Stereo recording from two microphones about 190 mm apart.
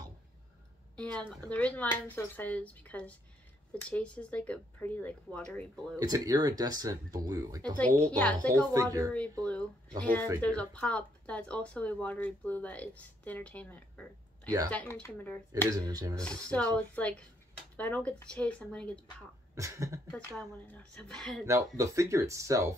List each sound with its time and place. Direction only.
0.9 s speech: 5° left (ahead or behind)
5.9 s speech: 20° right (ahead or behind)
8.0 s speech: 5° left (ahead or behind)
8.7 s speech: 20° right (ahead or behind)
9.4 s speech: 5° left (ahead or behind)
15.7 s speech: 20° right (ahead or behind)
16.3 s speech: 5° left (ahead or behind)
19.5 s speech: 15° right (ahead or behind)
20.1 s speech: 5° left (ahead or behind)
21.5 s speech: 15° right (ahead or behind)